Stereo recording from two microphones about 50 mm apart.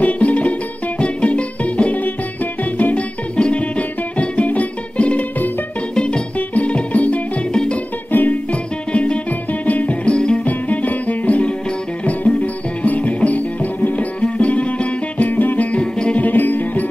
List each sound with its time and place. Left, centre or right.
0.0 s music: left
6.3 s music: left
7.5 s music: centre
8.1 s music: left; by 10.4 s centre
10.4 s music: left
16.3 s music: left